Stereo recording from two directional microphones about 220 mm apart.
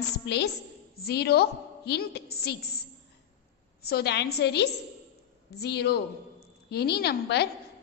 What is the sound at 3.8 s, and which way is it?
A woman's voice, 45° left (ahead or behind).